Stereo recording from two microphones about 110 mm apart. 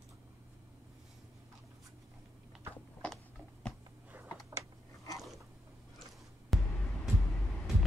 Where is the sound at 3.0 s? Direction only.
10° left (ahead or behind).